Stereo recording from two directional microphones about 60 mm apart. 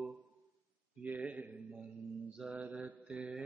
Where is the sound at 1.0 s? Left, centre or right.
Right.